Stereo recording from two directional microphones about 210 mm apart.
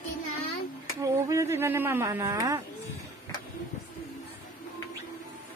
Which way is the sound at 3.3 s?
15° left (ahead or behind).